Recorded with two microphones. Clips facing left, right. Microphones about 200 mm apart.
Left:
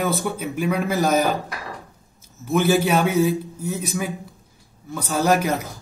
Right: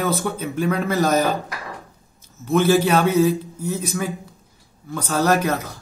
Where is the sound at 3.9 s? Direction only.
20° left (ahead or behind).